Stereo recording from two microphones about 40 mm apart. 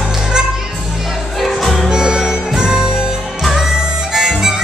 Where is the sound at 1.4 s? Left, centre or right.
Centre.